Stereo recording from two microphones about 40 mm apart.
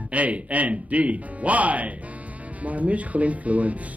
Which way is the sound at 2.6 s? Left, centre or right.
Right.